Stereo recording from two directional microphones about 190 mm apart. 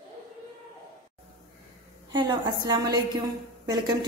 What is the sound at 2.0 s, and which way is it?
A woman's voice, 25° right (ahead or behind).